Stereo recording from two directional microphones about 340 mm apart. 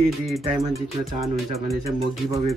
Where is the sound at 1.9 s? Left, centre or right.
Centre.